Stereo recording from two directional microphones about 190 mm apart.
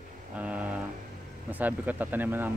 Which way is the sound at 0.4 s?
5° right (ahead or behind).